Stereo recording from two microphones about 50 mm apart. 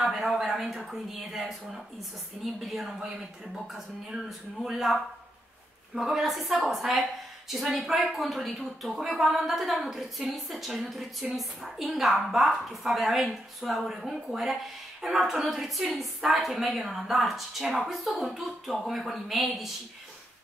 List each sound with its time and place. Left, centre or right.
0.0 s a woman's voice: centre